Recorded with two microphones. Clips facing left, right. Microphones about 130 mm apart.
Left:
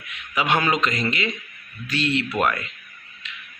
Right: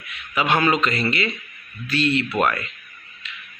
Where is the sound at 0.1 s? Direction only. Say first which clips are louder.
Right 1 dB; 15° left (ahead or behind).